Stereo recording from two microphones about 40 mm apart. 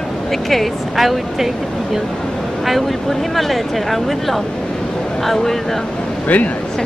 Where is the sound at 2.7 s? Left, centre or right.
Centre.